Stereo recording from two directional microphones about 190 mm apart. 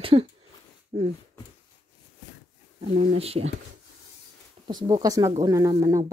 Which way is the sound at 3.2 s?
30° right (ahead or behind).